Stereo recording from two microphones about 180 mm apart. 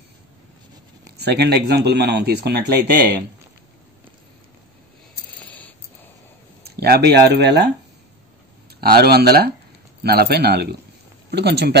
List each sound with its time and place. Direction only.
1.1 s speech: 65° right (ahead or behind)
6.6 s speech: 60° right (ahead or behind)
8.8 s speech: 60° right (ahead or behind)